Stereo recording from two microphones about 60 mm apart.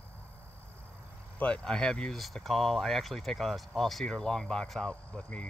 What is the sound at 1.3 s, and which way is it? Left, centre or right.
Vehicle, left.